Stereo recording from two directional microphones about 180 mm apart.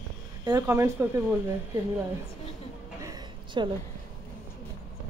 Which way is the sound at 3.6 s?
25° right (ahead or behind).